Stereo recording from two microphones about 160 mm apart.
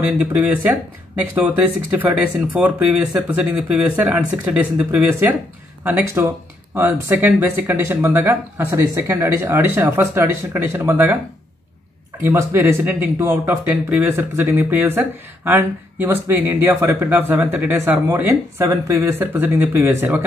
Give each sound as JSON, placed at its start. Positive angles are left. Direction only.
{"t": 0.0, "sound": "speech", "side_deg": -10}
{"t": 2.5, "sound": "speech", "side_deg": -10}
{"t": 12.2, "sound": "speech", "side_deg": -15}